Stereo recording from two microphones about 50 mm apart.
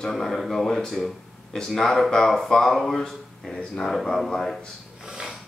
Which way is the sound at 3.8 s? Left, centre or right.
Centre.